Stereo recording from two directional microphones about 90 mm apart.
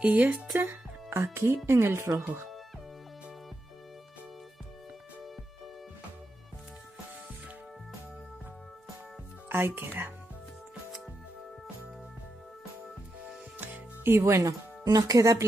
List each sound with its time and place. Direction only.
0.0 s speech: 20° right (ahead or behind)
1.1 s speech: 30° right (ahead or behind)
9.5 s speech: 25° right (ahead or behind)
13.6 s music: 25° right (ahead or behind)
14.9 s speech: 40° right (ahead or behind)